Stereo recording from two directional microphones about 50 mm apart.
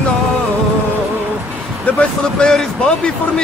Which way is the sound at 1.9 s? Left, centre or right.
Left.